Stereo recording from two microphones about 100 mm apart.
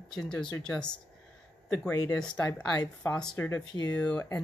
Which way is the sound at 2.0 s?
10° left (ahead or behind).